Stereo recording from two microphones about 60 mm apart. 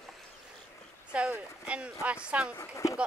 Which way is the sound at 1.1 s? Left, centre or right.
Centre.